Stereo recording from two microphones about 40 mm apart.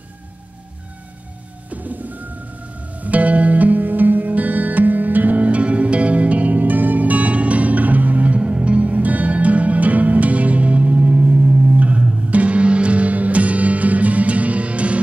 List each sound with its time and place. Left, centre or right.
1.7 s music: right